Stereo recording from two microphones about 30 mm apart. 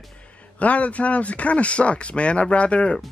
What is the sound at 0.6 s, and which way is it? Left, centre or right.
Speech, left.